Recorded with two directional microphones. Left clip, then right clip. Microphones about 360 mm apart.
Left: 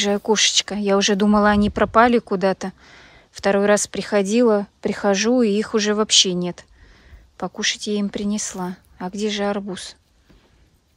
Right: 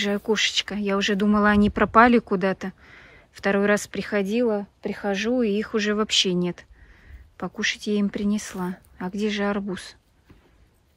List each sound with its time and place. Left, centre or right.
0.0 s speech: centre